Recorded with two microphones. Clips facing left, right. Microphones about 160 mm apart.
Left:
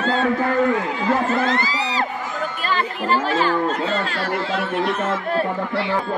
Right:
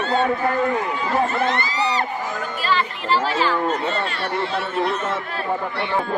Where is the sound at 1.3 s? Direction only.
90° left.